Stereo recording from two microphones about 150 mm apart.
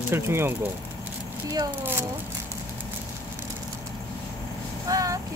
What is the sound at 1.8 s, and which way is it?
Speech, 15° right (ahead or behind).